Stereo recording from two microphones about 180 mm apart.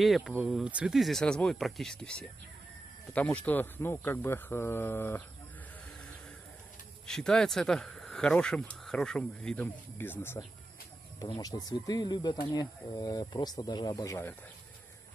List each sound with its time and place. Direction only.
0.0 s speech: centre (ahead or behind)
7.1 s speech: 5° left (ahead or behind)